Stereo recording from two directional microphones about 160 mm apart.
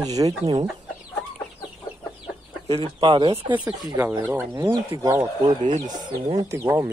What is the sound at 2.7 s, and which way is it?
Speech, 35° right (ahead or behind).